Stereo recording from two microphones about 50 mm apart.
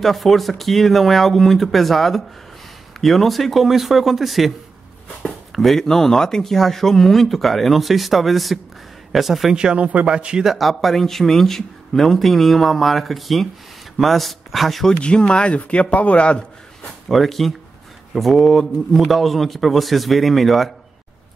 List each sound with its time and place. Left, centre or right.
0.0 s speech: centre
9.6 s speech: centre
10.4 s speech: centre
15.0 s a man's voice: centre
17.1 s speech: centre